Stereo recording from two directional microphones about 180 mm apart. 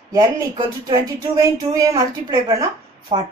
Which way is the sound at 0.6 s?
20° right (ahead or behind).